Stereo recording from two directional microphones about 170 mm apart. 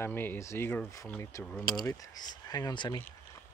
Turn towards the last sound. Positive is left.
turn(degrees=25)  # may be behind; listen again after turning